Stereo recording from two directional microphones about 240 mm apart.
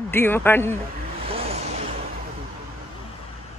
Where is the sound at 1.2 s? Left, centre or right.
Right.